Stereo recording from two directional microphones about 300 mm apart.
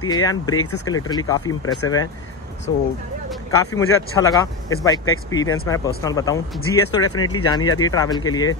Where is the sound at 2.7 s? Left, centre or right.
Centre.